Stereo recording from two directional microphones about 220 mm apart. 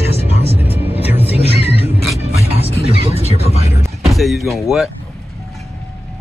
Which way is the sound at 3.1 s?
30° left (ahead or behind).